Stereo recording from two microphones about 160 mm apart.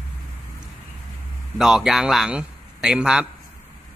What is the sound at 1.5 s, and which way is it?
A man's voice, 5° right (ahead or behind).